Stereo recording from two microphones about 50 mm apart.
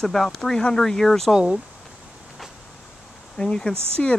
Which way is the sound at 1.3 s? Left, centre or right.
Centre.